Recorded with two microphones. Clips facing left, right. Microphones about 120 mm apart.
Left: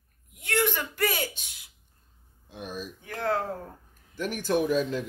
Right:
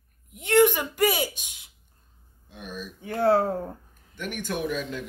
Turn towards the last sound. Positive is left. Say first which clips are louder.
# left 5 dB
turn(degrees=35)  # may be behind; listen again after turning